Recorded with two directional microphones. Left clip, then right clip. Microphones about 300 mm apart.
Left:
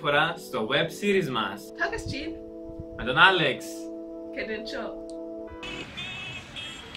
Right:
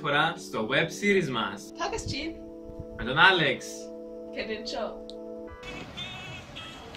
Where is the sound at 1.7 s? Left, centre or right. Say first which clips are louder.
Left 3 dB; centre.